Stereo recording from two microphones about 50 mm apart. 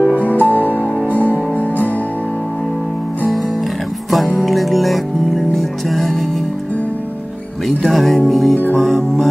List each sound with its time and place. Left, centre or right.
0.0 s music: right
0.3 s music: left
4.1 s music: centre
7.6 s speech: centre
8.3 s music: centre